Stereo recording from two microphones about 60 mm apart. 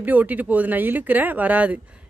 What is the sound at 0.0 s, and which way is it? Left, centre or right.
Speech, right.